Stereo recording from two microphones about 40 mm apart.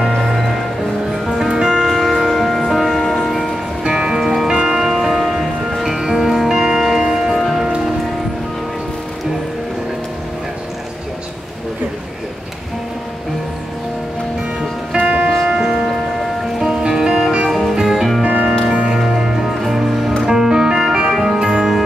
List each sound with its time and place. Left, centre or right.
0.2 s music: centre
1.9 s music: centre
3.8 s music: centre
7.3 s music: centre
7.6 s music: centre
15.0 s music: right
15.4 s music: right
16.5 s music: centre
17.5 s music: centre
18.2 s music: right
18.9 s music: centre
21.1 s music: centre
21.5 s music: centre